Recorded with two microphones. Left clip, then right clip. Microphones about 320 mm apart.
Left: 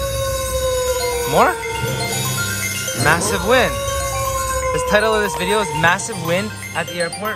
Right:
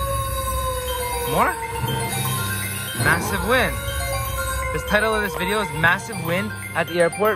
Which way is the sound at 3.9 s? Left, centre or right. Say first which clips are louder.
Left 6 dB; centre.